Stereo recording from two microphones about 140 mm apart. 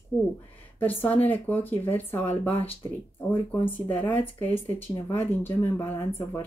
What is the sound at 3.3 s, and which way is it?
Speech, 15° left (ahead or behind).